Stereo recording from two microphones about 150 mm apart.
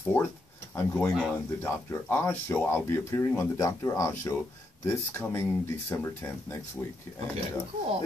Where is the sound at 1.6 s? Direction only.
15° left (ahead or behind).